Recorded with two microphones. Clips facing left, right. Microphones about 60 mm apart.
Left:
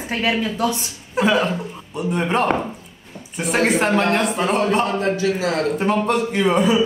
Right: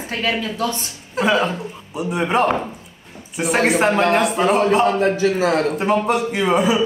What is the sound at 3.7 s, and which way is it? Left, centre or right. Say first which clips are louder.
Speech: right 2 dB; centre.